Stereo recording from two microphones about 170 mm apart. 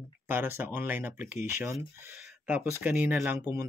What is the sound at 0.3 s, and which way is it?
Speech, 15° right (ahead or behind).